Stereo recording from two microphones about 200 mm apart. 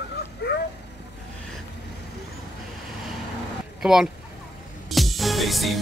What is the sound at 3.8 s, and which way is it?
Speech, centre (ahead or behind).